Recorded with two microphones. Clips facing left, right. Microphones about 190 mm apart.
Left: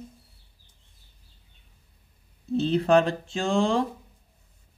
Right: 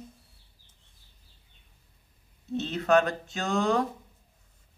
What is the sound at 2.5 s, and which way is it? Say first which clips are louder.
Speech: left 4 dB; 30° left (ahead or behind).